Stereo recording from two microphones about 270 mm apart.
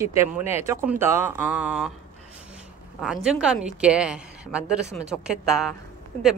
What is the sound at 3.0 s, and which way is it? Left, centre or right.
Speech, centre.